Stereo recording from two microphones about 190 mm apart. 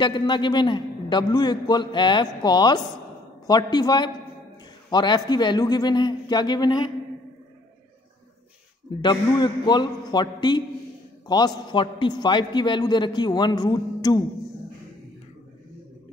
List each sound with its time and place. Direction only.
0.0 s a man's voice: 25° left (ahead or behind)
9.0 s a man's voice: 20° left (ahead or behind)